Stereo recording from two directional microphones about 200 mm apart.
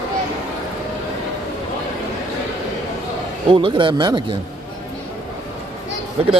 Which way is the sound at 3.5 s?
25° right (ahead or behind).